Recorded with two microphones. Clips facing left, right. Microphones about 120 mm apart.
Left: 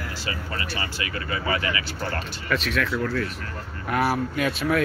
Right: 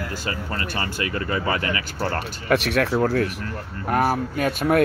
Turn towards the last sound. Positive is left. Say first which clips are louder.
# right 3 dB
turn(degrees=-40)  # may be behind; listen again after turning